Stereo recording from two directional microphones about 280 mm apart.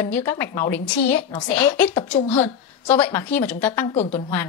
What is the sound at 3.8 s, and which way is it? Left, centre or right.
Speech, left.